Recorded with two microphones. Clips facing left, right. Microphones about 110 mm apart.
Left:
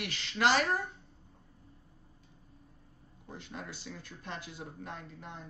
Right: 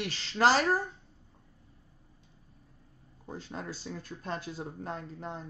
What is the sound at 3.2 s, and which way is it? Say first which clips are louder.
Speech: right 5 dB; 35° right (ahead or behind).